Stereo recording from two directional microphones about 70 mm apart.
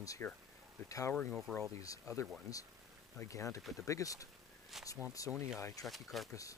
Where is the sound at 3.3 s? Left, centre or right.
Left.